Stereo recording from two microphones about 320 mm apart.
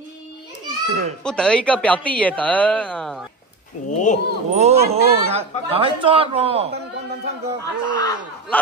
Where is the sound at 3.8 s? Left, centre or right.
Left.